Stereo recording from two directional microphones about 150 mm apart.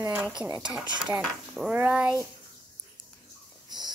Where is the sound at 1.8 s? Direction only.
10° right (ahead or behind).